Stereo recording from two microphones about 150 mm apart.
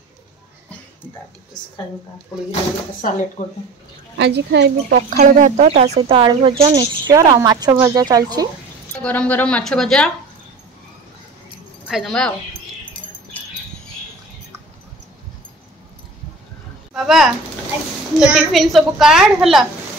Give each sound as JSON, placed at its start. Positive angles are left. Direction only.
{"t": 3.0, "sound": "speech", "side_deg": 60}
{"t": 4.3, "sound": "speech", "side_deg": -90}
{"t": 5.2, "sound": "a woman's voice", "side_deg": -50}
{"t": 8.9, "sound": "a woman's voice", "side_deg": 10}
{"t": 11.9, "sound": "a woman's voice", "side_deg": 0}
{"t": 16.9, "sound": "a sound", "side_deg": 0}
{"t": 18.2, "sound": "a woman's voice", "side_deg": -5}